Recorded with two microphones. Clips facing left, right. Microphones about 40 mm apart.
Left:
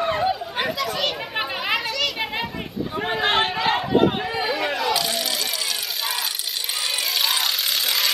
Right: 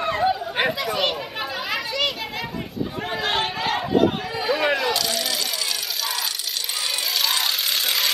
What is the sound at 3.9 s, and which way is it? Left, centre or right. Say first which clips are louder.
Run: right 2 dB; centre.